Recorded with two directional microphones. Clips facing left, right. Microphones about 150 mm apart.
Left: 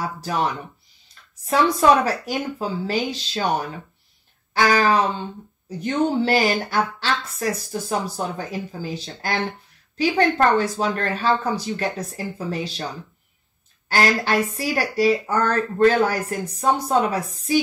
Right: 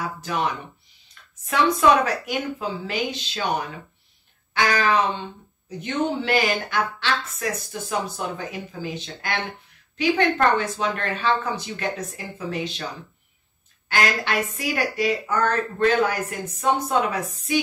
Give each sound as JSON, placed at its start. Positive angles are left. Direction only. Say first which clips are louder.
{"t": 0.2, "sound": "speech", "louder": "left 2 dB", "side_deg": 35}
{"t": 13.8, "sound": "speech", "louder": "left 3 dB", "side_deg": 35}